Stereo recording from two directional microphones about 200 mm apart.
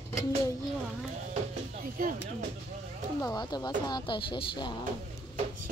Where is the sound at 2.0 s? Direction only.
45° right (ahead or behind).